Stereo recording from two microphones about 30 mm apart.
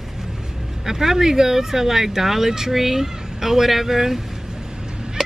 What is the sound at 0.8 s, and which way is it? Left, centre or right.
Speech, centre.